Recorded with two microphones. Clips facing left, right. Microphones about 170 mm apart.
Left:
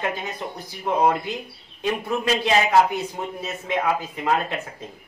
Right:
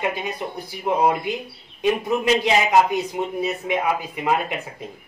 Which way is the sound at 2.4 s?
15° right (ahead or behind).